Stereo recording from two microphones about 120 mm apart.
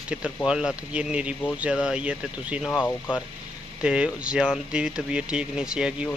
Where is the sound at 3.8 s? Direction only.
10° right (ahead or behind).